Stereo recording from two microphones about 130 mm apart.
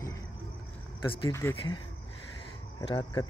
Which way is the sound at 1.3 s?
20° left (ahead or behind).